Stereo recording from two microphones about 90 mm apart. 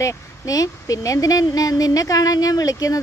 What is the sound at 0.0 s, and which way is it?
A woman's voice, 40° left (ahead or behind).